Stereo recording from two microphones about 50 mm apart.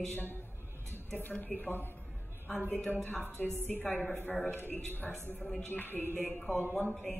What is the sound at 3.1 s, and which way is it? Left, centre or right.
Music, right.